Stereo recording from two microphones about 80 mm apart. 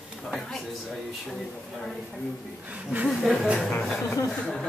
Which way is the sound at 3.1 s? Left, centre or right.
Centre.